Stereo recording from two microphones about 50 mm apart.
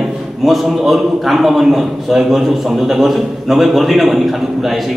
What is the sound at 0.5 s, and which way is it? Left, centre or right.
A man's voice, centre.